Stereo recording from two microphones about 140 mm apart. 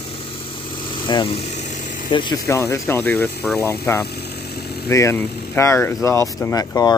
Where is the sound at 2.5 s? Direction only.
20° left (ahead or behind).